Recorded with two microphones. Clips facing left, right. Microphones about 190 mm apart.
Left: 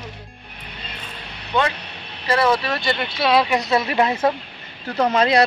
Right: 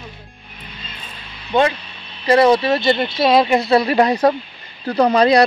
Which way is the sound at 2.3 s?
20° right (ahead or behind).